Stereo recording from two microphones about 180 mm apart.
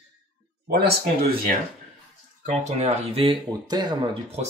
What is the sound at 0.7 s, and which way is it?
Speech, 60° right (ahead or behind).